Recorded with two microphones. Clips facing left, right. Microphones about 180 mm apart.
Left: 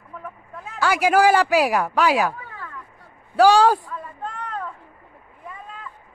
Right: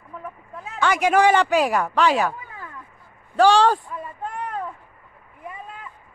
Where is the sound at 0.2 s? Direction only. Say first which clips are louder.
Right 1 dB; 5° right (ahead or behind).